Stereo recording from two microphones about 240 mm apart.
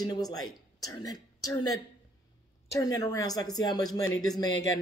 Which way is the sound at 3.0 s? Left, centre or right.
Centre.